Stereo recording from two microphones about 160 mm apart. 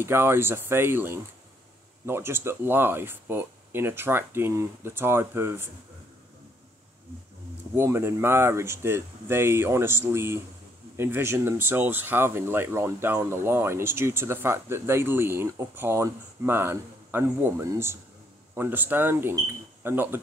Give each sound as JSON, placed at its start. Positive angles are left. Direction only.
{"t": 0.0, "sound": "speech", "side_deg": -15}
{"t": 7.7, "sound": "speech", "side_deg": -15}